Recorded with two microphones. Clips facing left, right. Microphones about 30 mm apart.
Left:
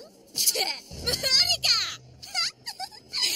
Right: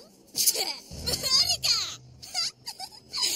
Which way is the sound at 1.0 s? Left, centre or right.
Left.